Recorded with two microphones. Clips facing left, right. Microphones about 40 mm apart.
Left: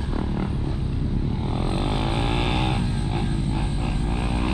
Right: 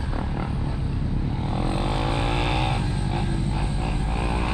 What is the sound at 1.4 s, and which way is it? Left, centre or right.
Vehicle, centre.